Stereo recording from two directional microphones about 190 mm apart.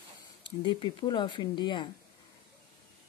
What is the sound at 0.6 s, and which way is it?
Speech, 25° left (ahead or behind).